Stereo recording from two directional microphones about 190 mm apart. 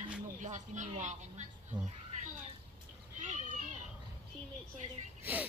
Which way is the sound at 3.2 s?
40° right (ahead or behind).